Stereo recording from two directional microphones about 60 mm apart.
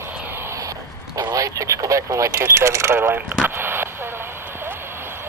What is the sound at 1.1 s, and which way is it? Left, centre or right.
Radio, right.